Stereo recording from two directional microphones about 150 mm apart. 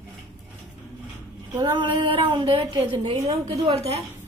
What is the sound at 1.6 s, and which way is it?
A woman's voice, 30° right (ahead or behind).